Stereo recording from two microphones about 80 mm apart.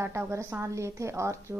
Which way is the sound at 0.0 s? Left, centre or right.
Right.